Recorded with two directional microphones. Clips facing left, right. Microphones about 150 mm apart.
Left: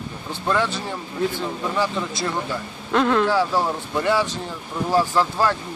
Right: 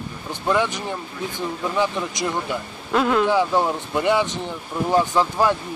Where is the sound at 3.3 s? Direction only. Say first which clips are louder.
Right 1 dB; 15° right (ahead or behind).